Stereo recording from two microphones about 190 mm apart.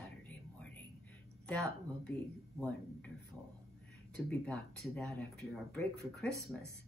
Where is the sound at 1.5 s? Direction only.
5° left (ahead or behind).